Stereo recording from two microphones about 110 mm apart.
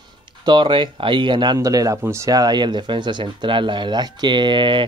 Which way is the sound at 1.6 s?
30° right (ahead or behind).